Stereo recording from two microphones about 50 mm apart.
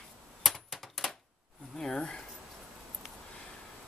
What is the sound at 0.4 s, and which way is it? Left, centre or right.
Typewriter, centre.